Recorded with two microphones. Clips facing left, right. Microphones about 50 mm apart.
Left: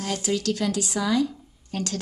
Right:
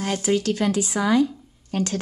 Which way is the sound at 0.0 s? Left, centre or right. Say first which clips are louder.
Right 4 dB; right.